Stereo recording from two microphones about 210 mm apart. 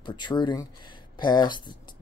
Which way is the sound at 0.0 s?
20° left (ahead or behind).